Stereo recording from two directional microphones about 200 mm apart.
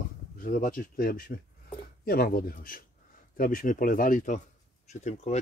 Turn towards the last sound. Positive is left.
turn(degrees=35)  # may be behind; listen again after turning